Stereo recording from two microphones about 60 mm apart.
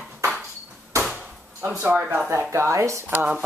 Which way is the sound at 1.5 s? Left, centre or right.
Right.